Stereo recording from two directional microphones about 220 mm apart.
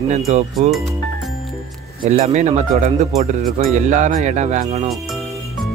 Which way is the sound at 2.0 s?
35° right (ahead or behind).